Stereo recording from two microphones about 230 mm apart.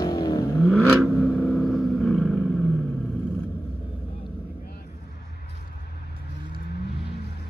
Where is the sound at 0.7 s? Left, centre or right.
Centre.